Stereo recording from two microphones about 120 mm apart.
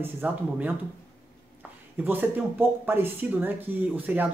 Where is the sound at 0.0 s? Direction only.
15° right (ahead or behind).